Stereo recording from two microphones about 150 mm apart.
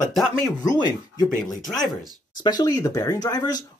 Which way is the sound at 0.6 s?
25° left (ahead or behind).